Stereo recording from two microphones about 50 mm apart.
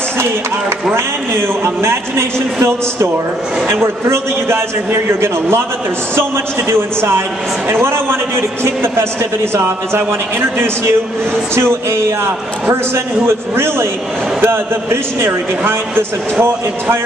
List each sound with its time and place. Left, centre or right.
0.9 s a man's voice: right
11.5 s a man's voice: right